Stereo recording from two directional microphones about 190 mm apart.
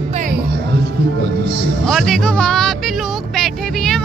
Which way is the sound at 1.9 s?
Centre (ahead or behind).